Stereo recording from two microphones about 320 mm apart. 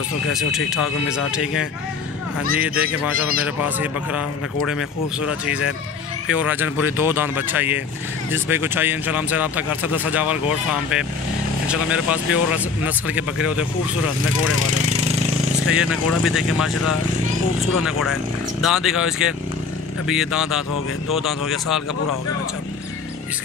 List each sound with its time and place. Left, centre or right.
0.3 s speech: centre
14.7 s a sound: centre
15.7 s speech: centre
17.7 s speech: centre